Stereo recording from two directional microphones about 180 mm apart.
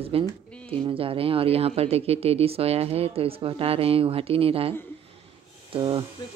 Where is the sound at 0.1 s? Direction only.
30° right (ahead or behind).